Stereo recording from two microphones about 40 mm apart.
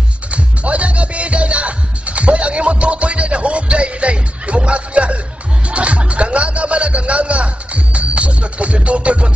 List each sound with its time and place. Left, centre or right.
0.3 s music: right